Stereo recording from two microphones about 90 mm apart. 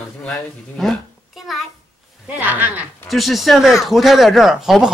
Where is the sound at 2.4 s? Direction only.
20° right (ahead or behind).